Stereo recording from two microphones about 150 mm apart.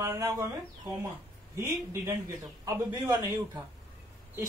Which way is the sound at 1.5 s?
15° right (ahead or behind).